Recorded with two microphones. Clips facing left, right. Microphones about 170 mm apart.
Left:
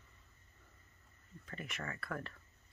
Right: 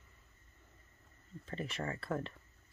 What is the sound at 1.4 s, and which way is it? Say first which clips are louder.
Speech: right 5 dB; 30° right (ahead or behind).